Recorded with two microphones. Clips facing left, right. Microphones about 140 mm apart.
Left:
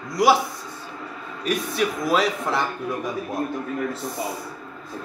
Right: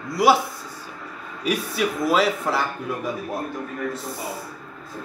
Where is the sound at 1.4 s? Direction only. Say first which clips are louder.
Even; 5° right (ahead or behind).